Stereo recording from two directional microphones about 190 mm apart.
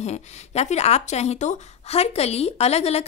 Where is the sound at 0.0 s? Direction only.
35° left (ahead or behind).